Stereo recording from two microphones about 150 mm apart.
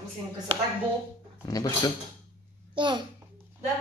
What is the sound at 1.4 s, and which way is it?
Speech, 25° left (ahead or behind).